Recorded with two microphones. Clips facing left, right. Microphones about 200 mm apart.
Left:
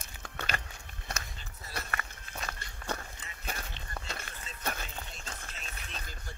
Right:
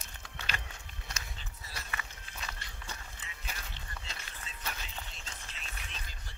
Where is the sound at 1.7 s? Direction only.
55° left (ahead or behind).